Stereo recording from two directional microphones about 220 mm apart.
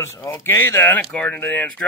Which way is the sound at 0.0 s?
10° left (ahead or behind).